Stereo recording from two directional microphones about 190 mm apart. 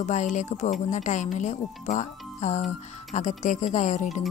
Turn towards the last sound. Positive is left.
turn(degrees=40)  # may be behind; listen again after turning